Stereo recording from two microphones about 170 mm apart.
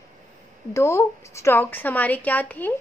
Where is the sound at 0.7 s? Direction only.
15° left (ahead or behind).